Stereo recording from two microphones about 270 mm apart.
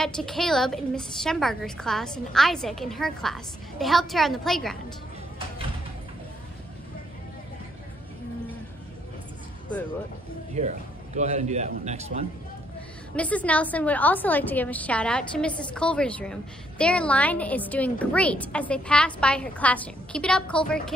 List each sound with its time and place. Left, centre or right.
0.0 s a woman's voice: centre
10.5 s a man's voice: right
13.1 s a woman's voice: centre